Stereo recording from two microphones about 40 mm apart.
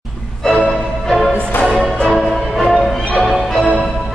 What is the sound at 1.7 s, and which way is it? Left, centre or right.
Music, centre.